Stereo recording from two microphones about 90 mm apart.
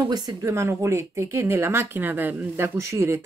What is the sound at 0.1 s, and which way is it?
Speech, 50° right (ahead or behind).